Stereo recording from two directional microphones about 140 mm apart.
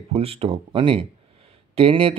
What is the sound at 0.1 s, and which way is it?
Speech, 45° right (ahead or behind).